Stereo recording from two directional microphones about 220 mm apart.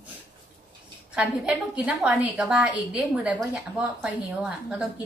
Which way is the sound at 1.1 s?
5° right (ahead or behind).